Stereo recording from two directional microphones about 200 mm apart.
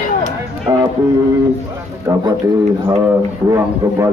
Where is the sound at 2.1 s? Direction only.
15° right (ahead or behind).